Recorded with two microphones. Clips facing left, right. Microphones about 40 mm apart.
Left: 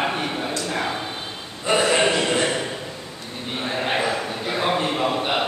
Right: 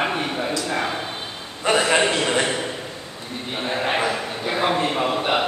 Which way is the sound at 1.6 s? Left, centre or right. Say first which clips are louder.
Even; right.